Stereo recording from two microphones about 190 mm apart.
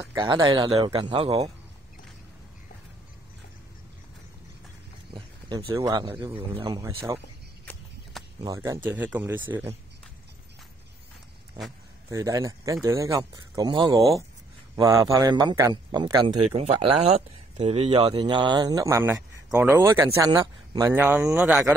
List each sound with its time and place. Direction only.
0.0 s speech: 20° right (ahead or behind)
5.7 s speech: 15° right (ahead or behind)
8.2 s a sound: centre (ahead or behind)
8.5 s speech: 15° right (ahead or behind)
11.6 s speech: 20° right (ahead or behind)
16.5 s speech: 35° right (ahead or behind); by 21.7 s 10° right (ahead or behind)